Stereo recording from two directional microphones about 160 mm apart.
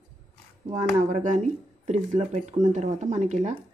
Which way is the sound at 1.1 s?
50° right (ahead or behind).